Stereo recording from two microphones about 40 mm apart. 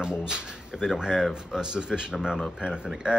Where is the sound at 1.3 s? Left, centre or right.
Centre.